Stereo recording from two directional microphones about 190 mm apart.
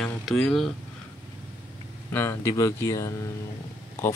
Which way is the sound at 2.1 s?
15° left (ahead or behind).